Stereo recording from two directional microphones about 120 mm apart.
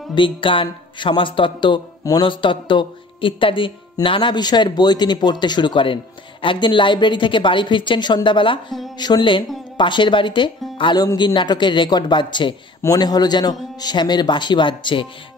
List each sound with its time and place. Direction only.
0.1 s a woman's voice: 45° left (ahead or behind)